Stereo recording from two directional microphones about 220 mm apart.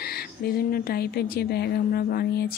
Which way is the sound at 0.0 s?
45° left (ahead or behind).